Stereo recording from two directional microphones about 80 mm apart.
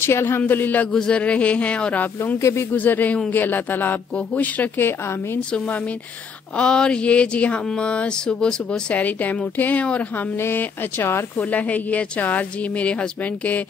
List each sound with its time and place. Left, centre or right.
0.0 s speech: left
0.9 s speech: centre
2.3 s speech: left
2.7 s speech: left
6.5 s speech: centre
10.3 s speech: left
11.5 s speech: centre